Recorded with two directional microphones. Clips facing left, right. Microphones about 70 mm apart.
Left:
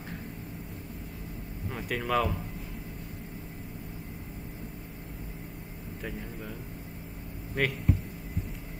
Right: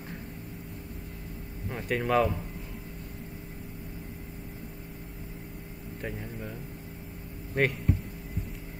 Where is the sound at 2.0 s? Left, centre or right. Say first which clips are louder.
Right 3 dB; right.